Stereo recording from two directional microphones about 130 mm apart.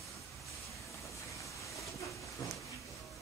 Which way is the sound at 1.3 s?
25° left (ahead or behind).